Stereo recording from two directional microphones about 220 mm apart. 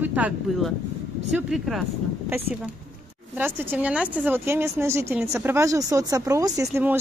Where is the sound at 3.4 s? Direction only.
10° right (ahead or behind).